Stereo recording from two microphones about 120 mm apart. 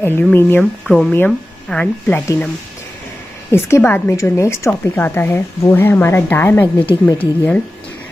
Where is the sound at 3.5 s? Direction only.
20° left (ahead or behind).